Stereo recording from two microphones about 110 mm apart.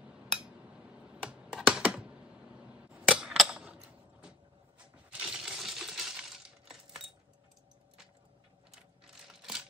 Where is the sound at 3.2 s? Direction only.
5° right (ahead or behind).